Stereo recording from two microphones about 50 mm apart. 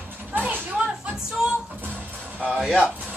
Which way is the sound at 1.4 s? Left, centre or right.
Centre.